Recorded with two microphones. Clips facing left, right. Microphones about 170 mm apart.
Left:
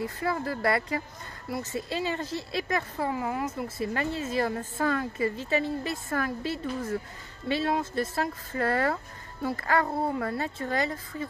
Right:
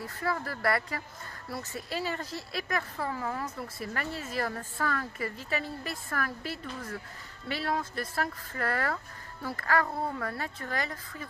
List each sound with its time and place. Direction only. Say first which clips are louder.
0.0 s speech: left 4 dB; 25° left (ahead or behind)